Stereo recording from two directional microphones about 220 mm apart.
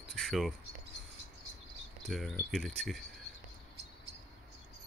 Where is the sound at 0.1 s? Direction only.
Centre (ahead or behind).